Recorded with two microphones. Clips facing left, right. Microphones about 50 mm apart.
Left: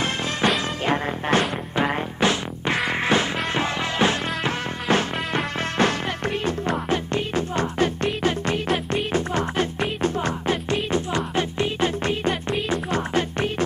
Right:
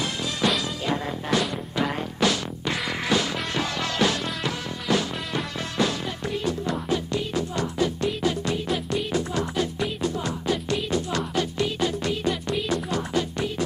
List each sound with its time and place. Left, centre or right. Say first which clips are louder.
0.0 s music: left 3 dB; left